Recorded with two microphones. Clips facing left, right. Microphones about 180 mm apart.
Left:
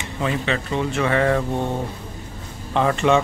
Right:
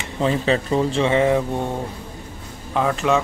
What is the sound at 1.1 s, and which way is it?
Speech, 20° right (ahead or behind).